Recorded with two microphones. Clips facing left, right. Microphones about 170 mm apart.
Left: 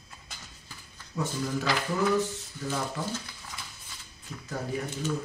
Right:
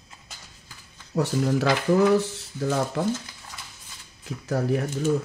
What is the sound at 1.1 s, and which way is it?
Speech, 75° right (ahead or behind).